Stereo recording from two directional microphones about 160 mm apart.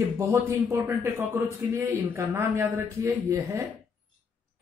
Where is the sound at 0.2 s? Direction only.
15° right (ahead or behind).